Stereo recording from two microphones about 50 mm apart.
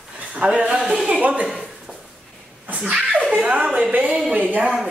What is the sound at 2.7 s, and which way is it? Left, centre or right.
A woman's voice, right.